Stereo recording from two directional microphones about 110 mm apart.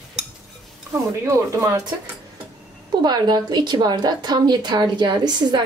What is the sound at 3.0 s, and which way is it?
A woman's voice, 40° right (ahead or behind).